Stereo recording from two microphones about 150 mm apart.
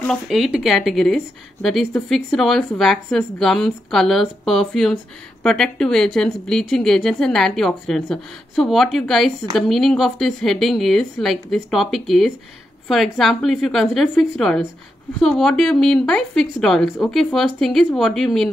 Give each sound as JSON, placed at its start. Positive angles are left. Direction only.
{"t": 0.1, "sound": "a woman's voice", "side_deg": 0}